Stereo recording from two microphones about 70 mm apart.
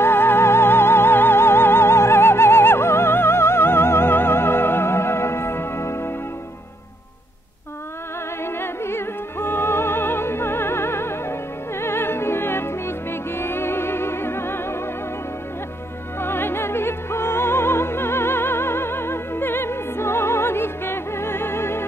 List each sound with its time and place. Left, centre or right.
0.0 s music: left
8.5 s music: left
16.2 s music: left